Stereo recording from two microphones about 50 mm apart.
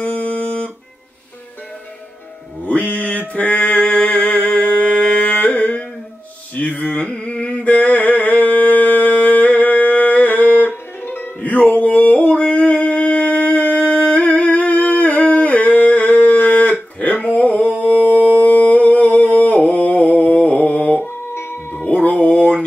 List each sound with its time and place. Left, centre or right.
0.0 s music: left
2.6 s a sound: left
20.4 s mantra: left
21.8 s music: left